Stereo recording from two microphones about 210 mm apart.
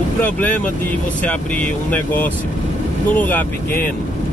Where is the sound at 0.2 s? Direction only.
5° left (ahead or behind).